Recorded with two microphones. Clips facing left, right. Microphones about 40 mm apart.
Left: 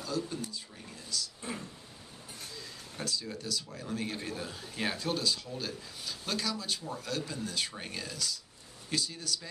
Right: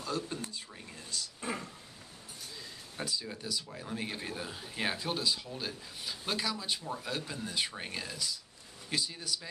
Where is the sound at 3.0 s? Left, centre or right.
Centre.